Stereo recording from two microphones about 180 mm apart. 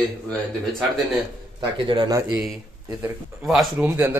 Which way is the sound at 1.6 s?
25° right (ahead or behind).